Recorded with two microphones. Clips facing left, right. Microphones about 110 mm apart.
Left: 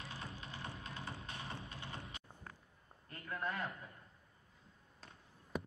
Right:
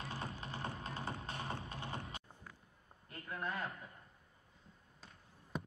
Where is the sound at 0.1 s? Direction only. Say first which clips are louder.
Right 4 dB; 40° right (ahead or behind).